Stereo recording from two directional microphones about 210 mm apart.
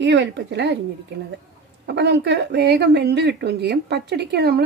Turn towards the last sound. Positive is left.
turn(degrees=-50)  # may be behind; listen again after turning